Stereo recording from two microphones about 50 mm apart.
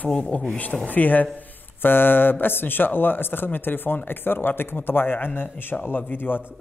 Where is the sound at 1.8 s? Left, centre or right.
Left.